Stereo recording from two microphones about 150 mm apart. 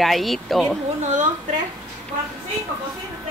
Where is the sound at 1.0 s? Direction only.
50° right (ahead or behind).